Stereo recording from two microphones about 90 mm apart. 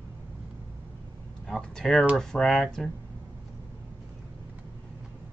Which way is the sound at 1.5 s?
5° left (ahead or behind).